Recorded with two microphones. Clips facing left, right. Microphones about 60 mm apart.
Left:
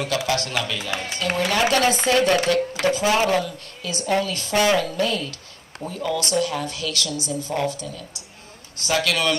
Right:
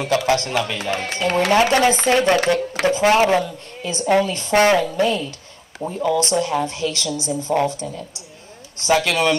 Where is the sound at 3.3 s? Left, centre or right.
Right.